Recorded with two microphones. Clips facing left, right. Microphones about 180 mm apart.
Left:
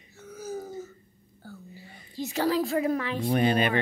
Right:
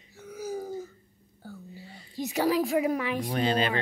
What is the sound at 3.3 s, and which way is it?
Speech, 15° left (ahead or behind).